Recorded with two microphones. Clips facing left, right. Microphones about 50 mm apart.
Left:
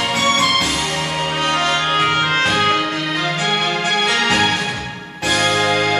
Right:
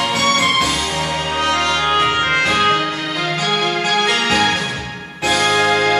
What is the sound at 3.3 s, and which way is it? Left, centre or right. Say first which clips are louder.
Music: right 2 dB; left.